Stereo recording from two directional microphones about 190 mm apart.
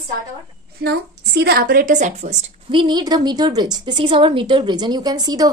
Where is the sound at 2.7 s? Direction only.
25° right (ahead or behind).